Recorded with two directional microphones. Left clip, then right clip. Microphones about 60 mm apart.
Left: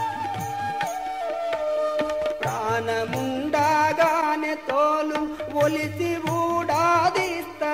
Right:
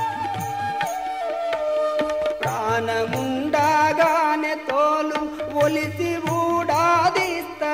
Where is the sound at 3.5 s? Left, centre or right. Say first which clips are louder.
Right 2 dB; left.